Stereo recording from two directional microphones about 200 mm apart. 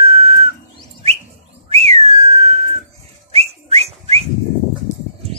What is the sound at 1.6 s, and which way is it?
Whistling, 30° right (ahead or behind).